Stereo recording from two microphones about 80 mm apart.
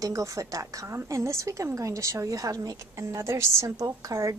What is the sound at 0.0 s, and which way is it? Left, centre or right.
A woman's voice, right.